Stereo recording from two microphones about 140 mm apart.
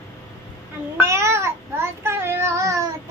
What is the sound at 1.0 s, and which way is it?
Child singing, 20° right (ahead or behind).